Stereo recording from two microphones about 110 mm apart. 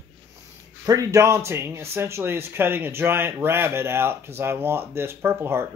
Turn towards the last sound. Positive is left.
turn(degrees=-20)  # may be behind; listen again after turning